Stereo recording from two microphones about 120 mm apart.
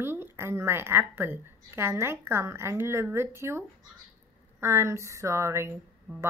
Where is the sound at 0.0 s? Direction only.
20° right (ahead or behind).